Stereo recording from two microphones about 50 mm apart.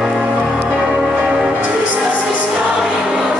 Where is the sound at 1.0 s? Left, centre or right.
Centre.